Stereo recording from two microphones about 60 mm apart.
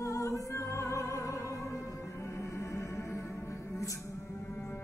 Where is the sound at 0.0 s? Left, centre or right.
Left.